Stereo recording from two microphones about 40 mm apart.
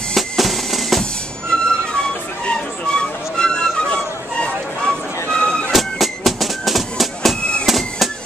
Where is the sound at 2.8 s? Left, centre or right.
Centre.